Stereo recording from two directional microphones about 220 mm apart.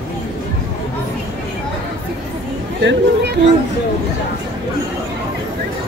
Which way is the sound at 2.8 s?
55° right (ahead or behind).